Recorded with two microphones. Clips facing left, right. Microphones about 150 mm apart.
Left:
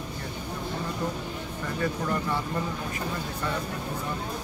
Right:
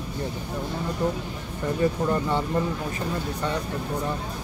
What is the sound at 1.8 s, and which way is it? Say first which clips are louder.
Speech: right 5 dB; 20° right (ahead or behind).